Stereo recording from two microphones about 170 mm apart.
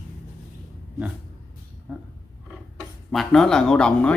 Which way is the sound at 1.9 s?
10° right (ahead or behind).